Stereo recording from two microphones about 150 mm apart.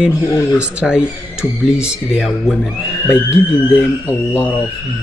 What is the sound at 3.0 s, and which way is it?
Speech, 15° left (ahead or behind).